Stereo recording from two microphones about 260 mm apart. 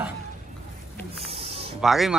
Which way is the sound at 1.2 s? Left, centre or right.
Right.